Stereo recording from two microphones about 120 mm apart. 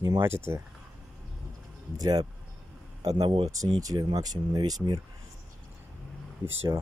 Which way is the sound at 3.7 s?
30° right (ahead or behind).